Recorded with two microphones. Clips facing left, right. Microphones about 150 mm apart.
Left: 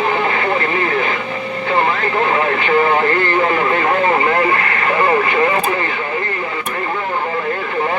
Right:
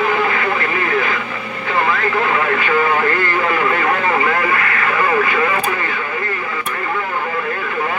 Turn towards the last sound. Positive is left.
turn(degrees=30)  # may be behind; listen again after turning